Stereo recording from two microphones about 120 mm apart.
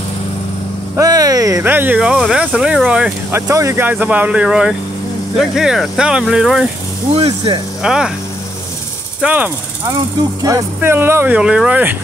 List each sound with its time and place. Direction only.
0.9 s vehicle: 30° right (ahead or behind)
1.6 s speech: 15° right (ahead or behind)
3.3 s speech: 20° right (ahead or behind); by 6.7 s 5° right (ahead or behind)
7.2 s speech: 60° right (ahead or behind)
7.8 s speech: 5° right (ahead or behind)
9.2 s speech: 15° right (ahead or behind)
10.4 s speech: 25° right (ahead or behind)
11.3 s speech: 5° right (ahead or behind)